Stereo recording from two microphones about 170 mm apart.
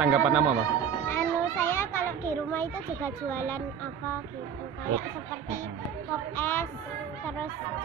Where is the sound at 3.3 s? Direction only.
15° left (ahead or behind).